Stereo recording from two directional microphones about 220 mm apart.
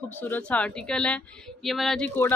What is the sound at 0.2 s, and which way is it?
Speech, 5° left (ahead or behind).